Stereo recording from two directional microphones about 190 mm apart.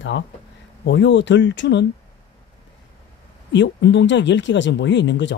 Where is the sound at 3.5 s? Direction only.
65° left (ahead or behind).